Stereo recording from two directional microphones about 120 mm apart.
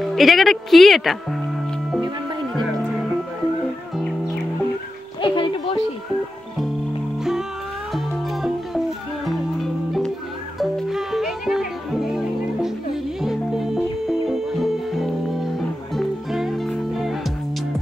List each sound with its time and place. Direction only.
0.0 s speech: centre (ahead or behind)
5.2 s a sound: 45° left (ahead or behind)
7.9 s music: centre (ahead or behind)